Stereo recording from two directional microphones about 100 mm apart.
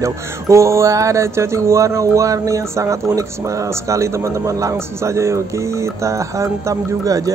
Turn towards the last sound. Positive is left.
turn(degrees=-35)  # may be behind; listen again after turning